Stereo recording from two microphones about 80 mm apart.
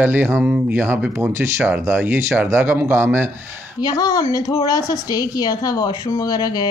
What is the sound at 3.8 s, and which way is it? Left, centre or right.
A woman's voice, left.